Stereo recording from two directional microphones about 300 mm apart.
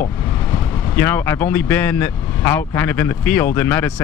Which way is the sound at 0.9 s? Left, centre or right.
Centre.